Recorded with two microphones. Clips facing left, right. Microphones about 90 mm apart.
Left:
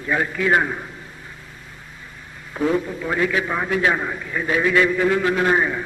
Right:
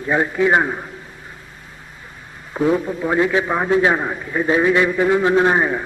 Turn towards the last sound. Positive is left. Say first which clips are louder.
# right 4 dB
turn(degrees=-25)  # may be behind; listen again after turning